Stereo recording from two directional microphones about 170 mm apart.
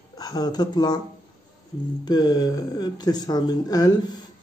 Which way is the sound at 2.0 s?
25° left (ahead or behind).